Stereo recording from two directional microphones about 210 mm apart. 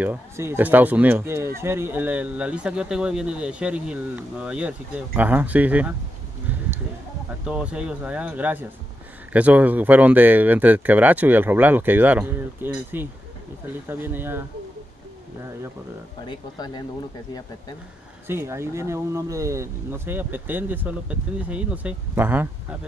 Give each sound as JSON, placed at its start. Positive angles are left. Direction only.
{"t": 0.0, "sound": "speech", "side_deg": -10}
{"t": 7.2, "sound": "speech", "side_deg": -5}
{"t": 16.3, "sound": "speech", "side_deg": 20}
{"t": 18.2, "sound": "speech", "side_deg": -10}